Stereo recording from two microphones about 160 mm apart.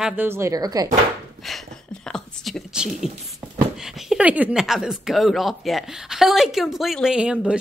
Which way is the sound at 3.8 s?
5° right (ahead or behind).